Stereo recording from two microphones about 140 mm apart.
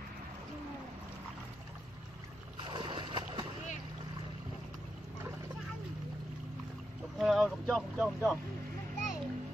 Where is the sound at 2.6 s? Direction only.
35° right (ahead or behind).